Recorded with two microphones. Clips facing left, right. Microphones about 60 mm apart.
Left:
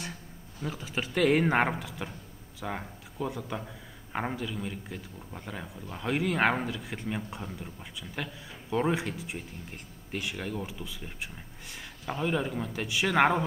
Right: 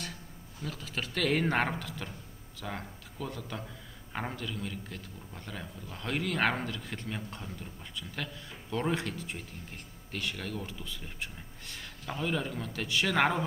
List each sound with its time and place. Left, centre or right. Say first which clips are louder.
0.6 s a man's voice: left 4 dB; centre